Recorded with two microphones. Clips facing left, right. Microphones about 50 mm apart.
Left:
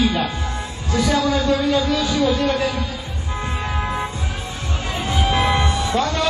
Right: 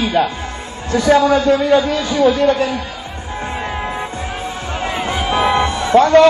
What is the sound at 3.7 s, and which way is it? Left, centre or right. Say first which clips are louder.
Music: right 1 dB; right.